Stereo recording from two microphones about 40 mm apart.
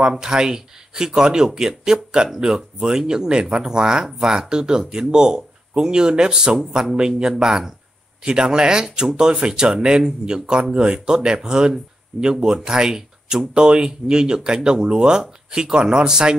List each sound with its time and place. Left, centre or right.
0.1 s speech: centre